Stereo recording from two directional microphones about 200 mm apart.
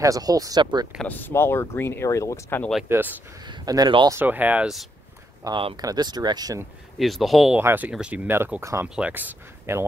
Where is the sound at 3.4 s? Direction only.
20° right (ahead or behind).